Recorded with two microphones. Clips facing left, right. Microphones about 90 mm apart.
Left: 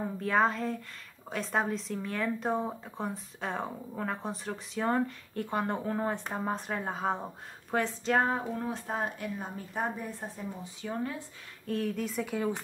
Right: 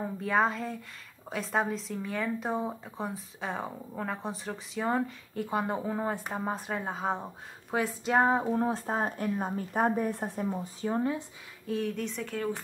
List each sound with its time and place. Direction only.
0.2 s speech: centre (ahead or behind); by 11.0 s 40° right (ahead or behind)
11.6 s speech: centre (ahead or behind)
12.4 s speech: 15° left (ahead or behind)